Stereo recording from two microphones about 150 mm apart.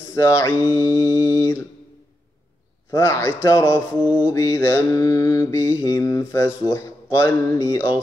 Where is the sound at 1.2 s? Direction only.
20° left (ahead or behind).